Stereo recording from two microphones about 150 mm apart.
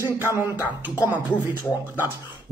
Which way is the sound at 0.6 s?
10° right (ahead or behind).